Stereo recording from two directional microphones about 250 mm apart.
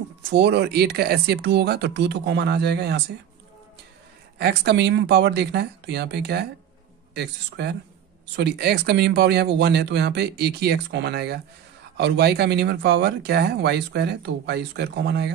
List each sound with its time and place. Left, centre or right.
0.3 s speech: right
4.4 s speech: right